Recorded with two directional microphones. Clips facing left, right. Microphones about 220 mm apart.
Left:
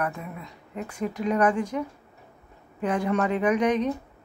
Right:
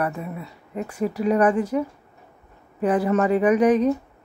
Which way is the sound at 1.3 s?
5° right (ahead or behind).